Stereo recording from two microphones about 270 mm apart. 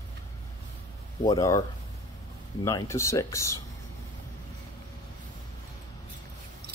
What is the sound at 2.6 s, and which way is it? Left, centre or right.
Speech, centre.